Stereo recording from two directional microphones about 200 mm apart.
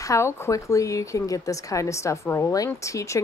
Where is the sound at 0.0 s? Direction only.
15° left (ahead or behind).